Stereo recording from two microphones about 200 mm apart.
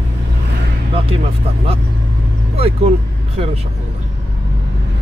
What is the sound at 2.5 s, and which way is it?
Speech, 30° right (ahead or behind).